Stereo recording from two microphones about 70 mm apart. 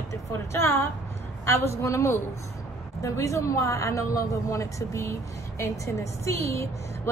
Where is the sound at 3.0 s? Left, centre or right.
Left.